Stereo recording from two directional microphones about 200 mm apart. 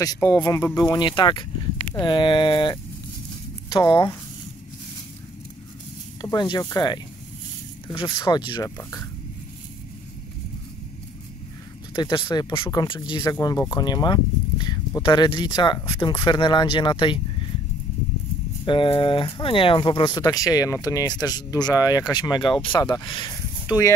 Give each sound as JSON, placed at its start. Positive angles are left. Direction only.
{"t": 0.0, "sound": "speech", "side_deg": 15}
{"t": 6.2, "sound": "speech", "side_deg": 20}
{"t": 11.9, "sound": "speech", "side_deg": 25}
{"t": 18.7, "sound": "speech", "side_deg": 25}